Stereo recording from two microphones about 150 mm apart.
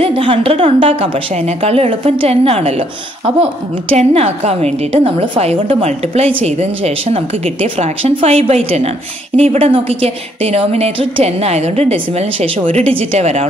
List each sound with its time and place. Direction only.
0.0 s a woman's voice: 35° right (ahead or behind)
3.9 s a woman's voice: 45° right (ahead or behind)